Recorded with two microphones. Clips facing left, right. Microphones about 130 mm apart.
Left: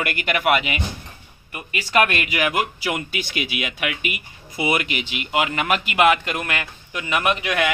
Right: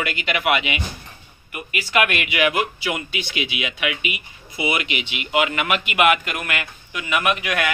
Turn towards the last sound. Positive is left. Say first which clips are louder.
# even
turn(degrees=30)  # may be behind; listen again after turning